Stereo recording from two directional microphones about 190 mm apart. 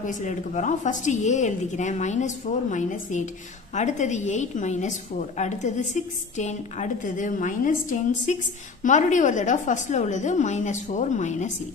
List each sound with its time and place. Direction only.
0.0 s a woman's voice: 40° left (ahead or behind)